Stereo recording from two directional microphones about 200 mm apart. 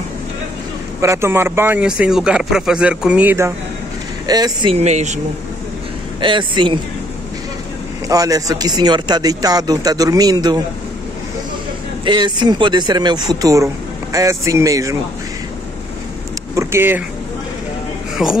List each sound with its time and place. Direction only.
1.0 s speech: 15° right (ahead or behind); by 5.2 s 35° right (ahead or behind)
6.2 s speech: 25° right (ahead or behind)
8.1 s speech: 15° right (ahead or behind)
12.0 s speech: 25° right (ahead or behind)
16.5 s speech: 10° right (ahead or behind)
18.2 s speech: centre (ahead or behind)